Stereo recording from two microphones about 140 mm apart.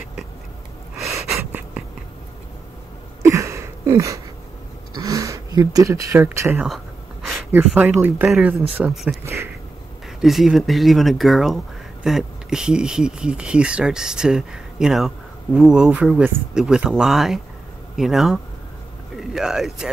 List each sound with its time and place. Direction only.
0.9 s gasp: centre (ahead or behind)
3.2 s a sound: 20° right (ahead or behind)
6.2 s speech: 15° right (ahead or behind)
9.2 s speech: 20° right (ahead or behind)
10.2 s speech: centre (ahead or behind)